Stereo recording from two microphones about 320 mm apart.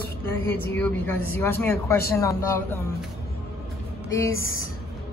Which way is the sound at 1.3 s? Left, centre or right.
Centre.